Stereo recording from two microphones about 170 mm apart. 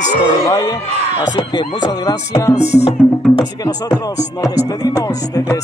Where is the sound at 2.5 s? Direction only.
40° left (ahead or behind).